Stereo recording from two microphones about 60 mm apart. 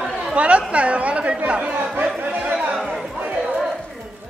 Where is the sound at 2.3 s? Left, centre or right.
Right.